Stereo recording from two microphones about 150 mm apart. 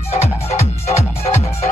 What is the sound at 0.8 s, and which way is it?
Music, 45° left (ahead or behind).